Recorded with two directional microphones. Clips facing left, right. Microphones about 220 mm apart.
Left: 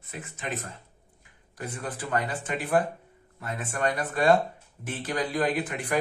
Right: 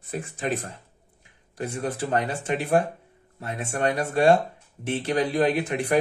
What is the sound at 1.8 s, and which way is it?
Speech, 25° right (ahead or behind).